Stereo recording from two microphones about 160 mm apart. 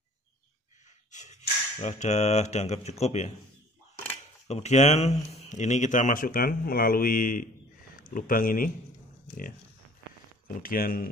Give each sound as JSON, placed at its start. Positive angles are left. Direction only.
{"t": 1.1, "sound": "a sound", "side_deg": 50}
{"t": 4.5, "sound": "a man's voice", "side_deg": 45}
{"t": 10.5, "sound": "speech", "side_deg": 65}